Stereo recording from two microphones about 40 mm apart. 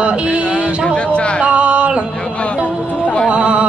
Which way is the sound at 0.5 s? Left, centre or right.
Left.